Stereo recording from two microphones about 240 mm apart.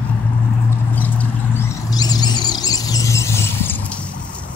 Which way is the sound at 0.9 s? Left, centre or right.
Centre.